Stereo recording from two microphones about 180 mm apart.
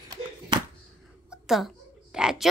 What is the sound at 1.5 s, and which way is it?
Speech, centre (ahead or behind).